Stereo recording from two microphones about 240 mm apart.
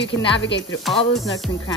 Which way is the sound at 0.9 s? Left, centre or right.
Centre.